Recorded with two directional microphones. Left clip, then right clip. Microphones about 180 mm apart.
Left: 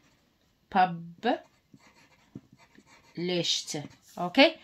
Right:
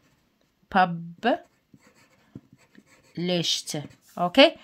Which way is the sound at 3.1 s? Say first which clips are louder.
Right 3 dB; 55° right (ahead or behind).